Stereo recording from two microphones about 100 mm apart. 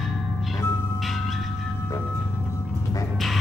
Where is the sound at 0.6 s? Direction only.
25° left (ahead or behind).